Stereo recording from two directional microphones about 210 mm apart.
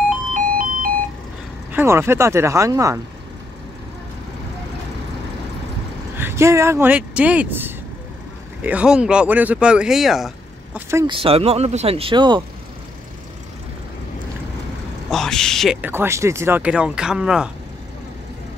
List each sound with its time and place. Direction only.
0.3 s ice cream truck: 40° right (ahead or behind)
1.7 s speech: 10° right (ahead or behind)
6.1 s speech: 10° right (ahead or behind)
10.9 s speech: 15° right (ahead or behind)
11.1 s speech: 25° right (ahead or behind)
15.0 s speech: centre (ahead or behind)